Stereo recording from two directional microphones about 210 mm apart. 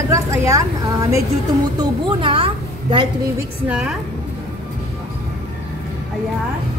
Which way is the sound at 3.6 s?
5° right (ahead or behind).